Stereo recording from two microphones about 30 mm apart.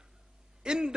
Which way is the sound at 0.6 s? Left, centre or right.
Right.